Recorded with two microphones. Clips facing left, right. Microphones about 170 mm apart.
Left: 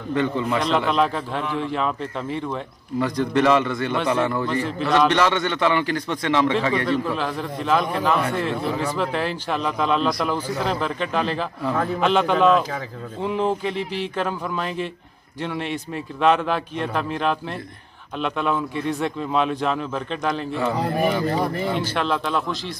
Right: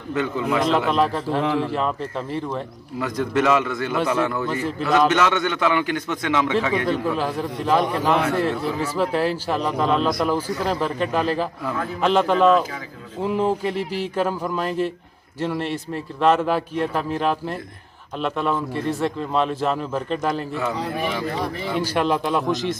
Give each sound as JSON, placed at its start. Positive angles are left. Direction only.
{"t": 0.1, "sound": "a man's voice", "side_deg": -5}
{"t": 20.7, "sound": "speech", "side_deg": 50}
{"t": 21.7, "sound": "speech", "side_deg": -10}